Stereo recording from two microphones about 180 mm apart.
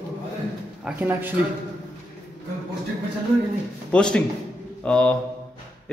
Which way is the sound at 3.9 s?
5° left (ahead or behind).